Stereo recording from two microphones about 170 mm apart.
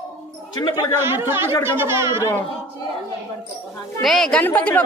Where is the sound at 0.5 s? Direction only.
25° left (ahead or behind).